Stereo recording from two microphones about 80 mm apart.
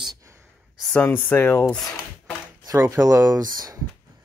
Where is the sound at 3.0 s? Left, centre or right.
Right.